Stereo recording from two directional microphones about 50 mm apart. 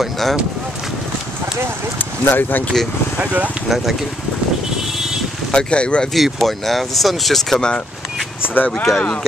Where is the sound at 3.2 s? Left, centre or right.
Right.